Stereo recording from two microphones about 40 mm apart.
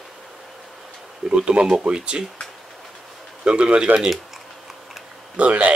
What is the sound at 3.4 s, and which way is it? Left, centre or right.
Speech, right.